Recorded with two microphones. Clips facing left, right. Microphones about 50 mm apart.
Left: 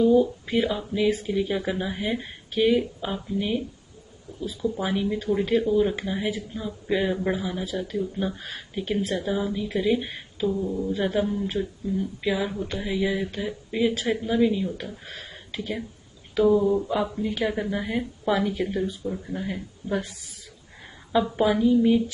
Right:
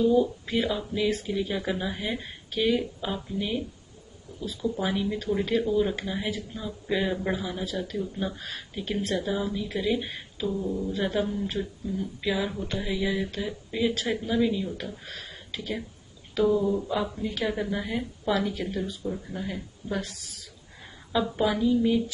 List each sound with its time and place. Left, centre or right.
0.0 s speech: centre
19.0 s speech: centre
20.1 s speech: left
21.2 s speech: centre